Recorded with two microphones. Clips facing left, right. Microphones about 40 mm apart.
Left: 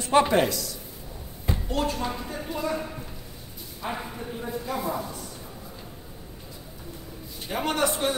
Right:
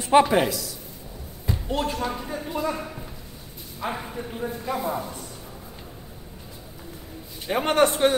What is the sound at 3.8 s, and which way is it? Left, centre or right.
A man's voice, right.